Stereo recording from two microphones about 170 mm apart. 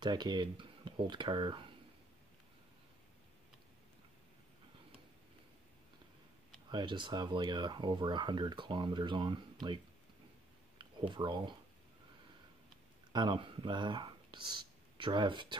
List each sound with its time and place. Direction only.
0.0 s speech: 25° right (ahead or behind)
6.7 s speech: 25° right (ahead or behind)
10.8 s speech: 30° right (ahead or behind)
13.1 s speech: 25° right (ahead or behind)